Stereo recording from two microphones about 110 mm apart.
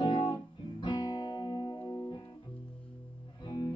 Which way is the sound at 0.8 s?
40° left (ahead or behind).